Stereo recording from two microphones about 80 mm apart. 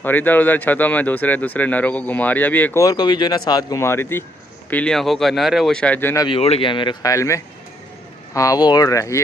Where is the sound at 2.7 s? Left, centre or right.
Left.